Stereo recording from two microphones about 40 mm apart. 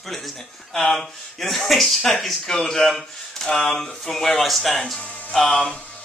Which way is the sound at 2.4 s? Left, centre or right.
Centre.